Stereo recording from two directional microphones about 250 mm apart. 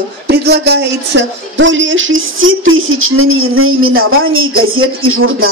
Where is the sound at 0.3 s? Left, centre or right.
Right.